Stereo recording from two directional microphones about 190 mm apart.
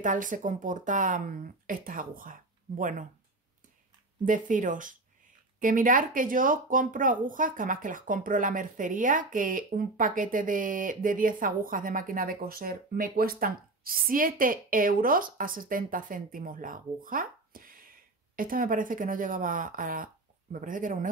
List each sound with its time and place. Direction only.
0.0 s speech: 45° right (ahead or behind)
4.2 s speech: 45° right (ahead or behind)